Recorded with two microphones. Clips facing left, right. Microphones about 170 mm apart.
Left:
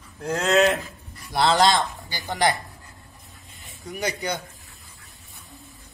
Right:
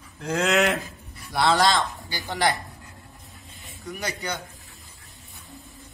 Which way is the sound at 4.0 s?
15° left (ahead or behind).